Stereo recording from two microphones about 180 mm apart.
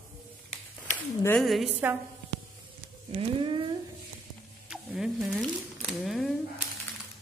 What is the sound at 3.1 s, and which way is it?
Speech, 30° right (ahead or behind).